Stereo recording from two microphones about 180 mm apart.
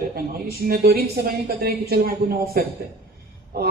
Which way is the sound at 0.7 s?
55° right (ahead or behind).